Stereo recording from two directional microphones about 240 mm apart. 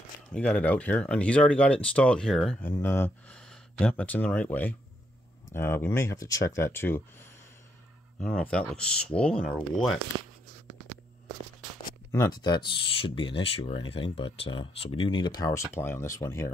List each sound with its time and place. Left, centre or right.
0.3 s speech: centre
10.1 s speech: centre
12.1 s speech: centre